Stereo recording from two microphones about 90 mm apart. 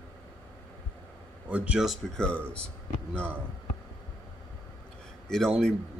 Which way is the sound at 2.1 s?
10° left (ahead or behind).